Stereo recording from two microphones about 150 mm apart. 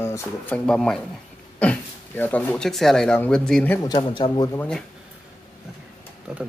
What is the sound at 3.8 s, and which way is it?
Speech, 30° left (ahead or behind).